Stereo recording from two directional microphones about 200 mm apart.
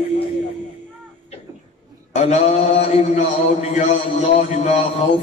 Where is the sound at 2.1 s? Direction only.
35° left (ahead or behind).